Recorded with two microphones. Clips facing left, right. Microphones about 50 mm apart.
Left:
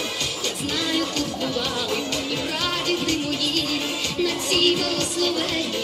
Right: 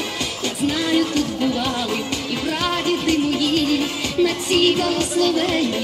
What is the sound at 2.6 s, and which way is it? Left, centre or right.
Music, centre.